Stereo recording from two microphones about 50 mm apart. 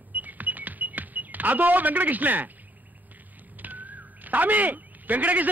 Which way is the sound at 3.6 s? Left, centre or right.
Right.